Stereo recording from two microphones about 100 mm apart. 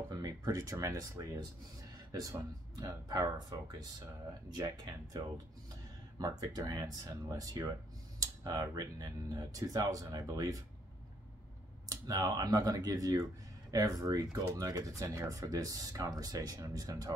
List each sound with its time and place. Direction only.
0.1 s speech: 40° right (ahead or behind)
2.8 s speech: 40° right (ahead or behind)
11.9 s speech: 35° right (ahead or behind)